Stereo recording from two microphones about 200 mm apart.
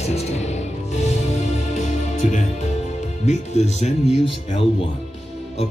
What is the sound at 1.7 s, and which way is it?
Music, 35° left (ahead or behind).